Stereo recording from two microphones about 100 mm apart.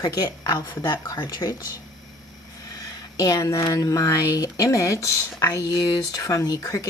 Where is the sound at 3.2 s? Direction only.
35° left (ahead or behind).